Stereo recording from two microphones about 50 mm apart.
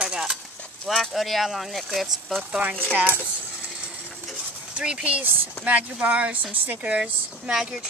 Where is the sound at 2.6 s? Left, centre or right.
Right.